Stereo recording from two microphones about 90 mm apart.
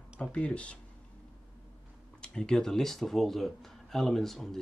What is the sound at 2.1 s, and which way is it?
Speech, 10° left (ahead or behind).